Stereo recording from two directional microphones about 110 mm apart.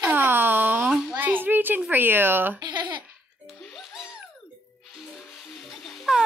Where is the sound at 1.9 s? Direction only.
20° right (ahead or behind).